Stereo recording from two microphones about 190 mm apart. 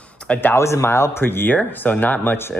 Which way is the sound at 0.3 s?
10° left (ahead or behind).